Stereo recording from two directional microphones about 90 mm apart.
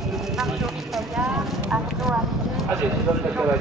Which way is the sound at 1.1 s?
5° right (ahead or behind).